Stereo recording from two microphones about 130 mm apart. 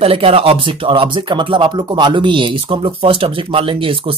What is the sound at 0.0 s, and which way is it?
Speech, 50° right (ahead or behind).